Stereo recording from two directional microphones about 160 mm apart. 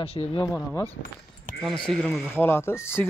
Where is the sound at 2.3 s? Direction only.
15° left (ahead or behind).